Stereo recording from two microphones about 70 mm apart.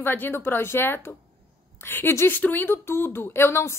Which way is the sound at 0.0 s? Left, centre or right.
Left.